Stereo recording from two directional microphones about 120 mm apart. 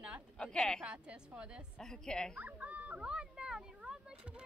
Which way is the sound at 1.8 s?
5° left (ahead or behind).